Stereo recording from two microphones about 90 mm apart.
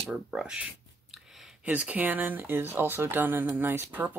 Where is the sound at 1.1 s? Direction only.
5° right (ahead or behind).